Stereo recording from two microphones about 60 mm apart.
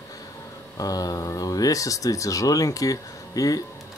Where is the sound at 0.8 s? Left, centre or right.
Left.